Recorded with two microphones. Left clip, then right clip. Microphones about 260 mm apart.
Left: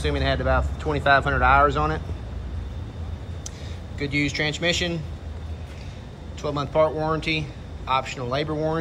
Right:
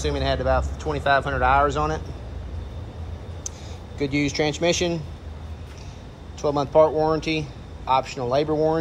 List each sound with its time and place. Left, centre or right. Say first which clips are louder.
0.0 s a man's voice: right 1 dB; centre
4.0 s speech: right 1 dB; right
6.4 s a man's voice: right 4 dB; centre